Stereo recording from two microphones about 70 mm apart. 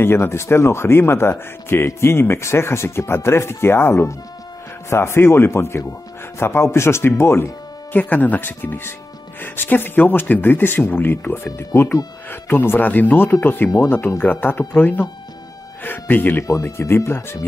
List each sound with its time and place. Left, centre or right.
0.0 s speech: left
7.9 s speech: left
16.4 s speech: left
16.7 s speech: left